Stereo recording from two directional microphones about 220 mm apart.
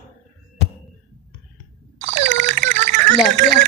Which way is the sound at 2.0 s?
55° right (ahead or behind).